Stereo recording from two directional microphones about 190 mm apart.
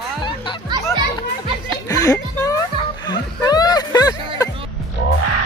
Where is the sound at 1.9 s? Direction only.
20° left (ahead or behind).